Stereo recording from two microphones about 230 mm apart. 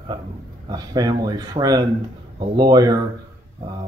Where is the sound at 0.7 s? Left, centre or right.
Centre.